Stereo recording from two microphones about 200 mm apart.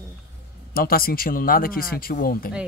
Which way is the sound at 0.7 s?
50° left (ahead or behind).